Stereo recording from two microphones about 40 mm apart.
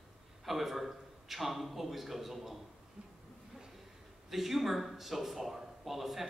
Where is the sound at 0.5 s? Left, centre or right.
Centre.